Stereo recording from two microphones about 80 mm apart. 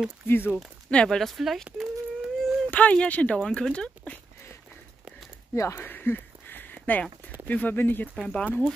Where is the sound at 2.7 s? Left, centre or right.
Centre.